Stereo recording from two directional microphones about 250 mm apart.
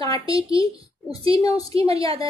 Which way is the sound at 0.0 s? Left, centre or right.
Centre.